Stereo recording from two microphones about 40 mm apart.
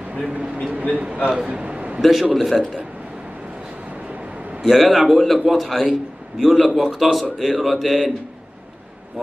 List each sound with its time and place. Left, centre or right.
0.3 s speech: right
1.5 s a sound: right
2.0 s a man's voice: centre
3.9 s vehicle: right
4.6 s a man's voice: centre